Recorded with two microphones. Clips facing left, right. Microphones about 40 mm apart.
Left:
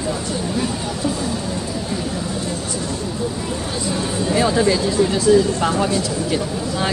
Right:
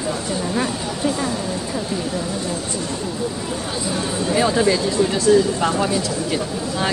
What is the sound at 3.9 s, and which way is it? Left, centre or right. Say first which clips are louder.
Speech: left 1 dB; centre.